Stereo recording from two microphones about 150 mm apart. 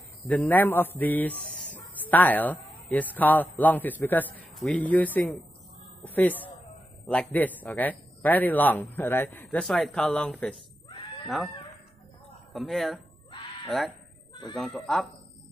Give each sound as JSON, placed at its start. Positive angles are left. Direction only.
{"t": 0.3, "sound": "a man's voice", "side_deg": 10}
{"t": 12.5, "sound": "speech", "side_deg": 0}